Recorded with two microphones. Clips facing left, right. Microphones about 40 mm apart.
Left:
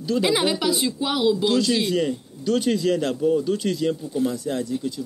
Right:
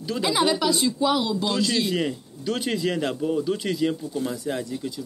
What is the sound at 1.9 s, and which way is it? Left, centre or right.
Speech, centre.